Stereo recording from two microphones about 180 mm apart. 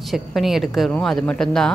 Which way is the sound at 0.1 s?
Centre (ahead or behind).